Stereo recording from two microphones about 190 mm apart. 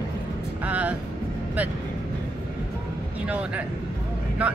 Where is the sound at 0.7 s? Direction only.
10° right (ahead or behind).